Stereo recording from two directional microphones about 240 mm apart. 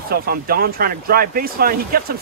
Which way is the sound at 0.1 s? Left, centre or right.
Right.